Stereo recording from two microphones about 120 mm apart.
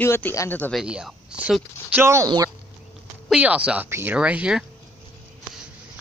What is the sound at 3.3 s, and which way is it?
Speech, 10° right (ahead or behind).